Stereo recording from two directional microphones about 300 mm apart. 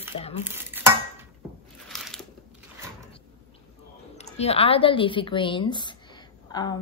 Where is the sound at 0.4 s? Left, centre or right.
Centre.